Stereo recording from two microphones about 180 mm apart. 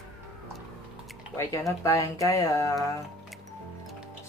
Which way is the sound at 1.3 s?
15° left (ahead or behind).